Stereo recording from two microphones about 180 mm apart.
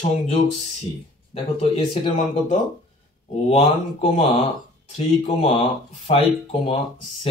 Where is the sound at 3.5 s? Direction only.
30° left (ahead or behind).